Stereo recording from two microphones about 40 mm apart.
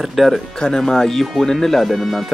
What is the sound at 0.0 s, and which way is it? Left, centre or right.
Speech, centre.